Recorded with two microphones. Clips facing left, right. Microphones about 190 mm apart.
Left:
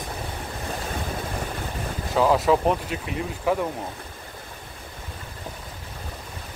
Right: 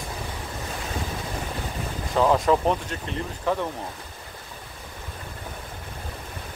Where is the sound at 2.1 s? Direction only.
5° left (ahead or behind).